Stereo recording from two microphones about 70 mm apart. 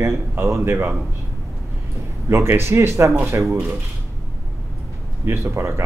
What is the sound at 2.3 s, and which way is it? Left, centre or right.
Speech, right.